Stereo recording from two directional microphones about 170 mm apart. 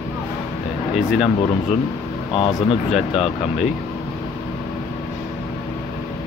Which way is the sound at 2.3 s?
30° left (ahead or behind).